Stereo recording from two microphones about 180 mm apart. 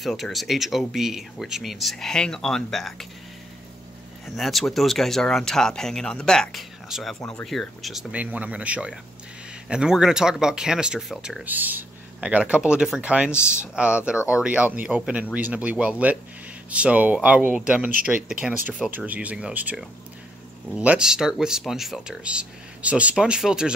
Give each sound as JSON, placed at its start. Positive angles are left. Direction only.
{"t": 0.0, "sound": "speech", "side_deg": 0}
{"t": 4.4, "sound": "speech", "side_deg": 0}
{"t": 13.3, "sound": "speech", "side_deg": 15}
{"t": 13.7, "sound": "speech", "side_deg": -5}